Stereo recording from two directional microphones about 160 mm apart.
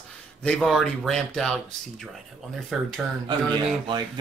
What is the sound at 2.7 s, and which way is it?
Speech, centre (ahead or behind).